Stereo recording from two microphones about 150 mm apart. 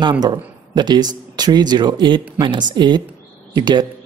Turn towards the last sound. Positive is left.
turn(degrees=-30)  # may be behind; listen again after turning